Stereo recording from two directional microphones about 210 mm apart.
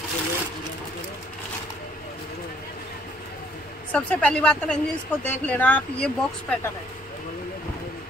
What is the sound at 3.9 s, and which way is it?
Speech, 5° left (ahead or behind).